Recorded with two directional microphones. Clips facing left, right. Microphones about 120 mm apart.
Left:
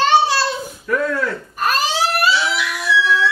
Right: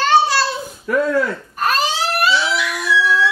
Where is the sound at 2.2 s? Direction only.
Centre (ahead or behind).